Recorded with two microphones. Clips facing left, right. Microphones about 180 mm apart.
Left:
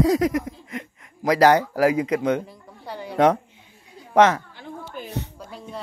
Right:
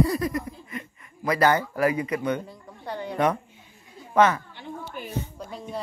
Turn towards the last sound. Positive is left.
turn(degrees=0)  # may be behind; listen again after turning